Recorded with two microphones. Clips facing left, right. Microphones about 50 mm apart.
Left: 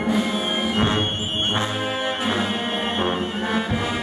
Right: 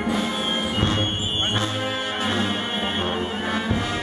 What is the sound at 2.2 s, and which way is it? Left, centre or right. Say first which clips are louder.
Music: left 1 dB; centre.